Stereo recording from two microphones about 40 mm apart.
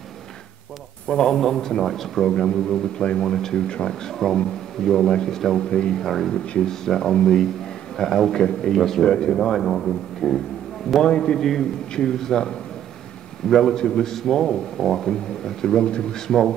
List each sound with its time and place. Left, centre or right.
1.0 s a man's voice: centre
3.0 s speech: left
3.3 s a man's voice: centre
3.6 s speech: left
4.1 s a man's voice: centre
6.0 s a man's voice: centre
13.7 s speech: centre
14.1 s a man's voice: centre